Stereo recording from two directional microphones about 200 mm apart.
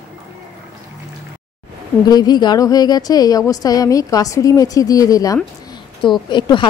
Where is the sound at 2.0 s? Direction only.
20° left (ahead or behind).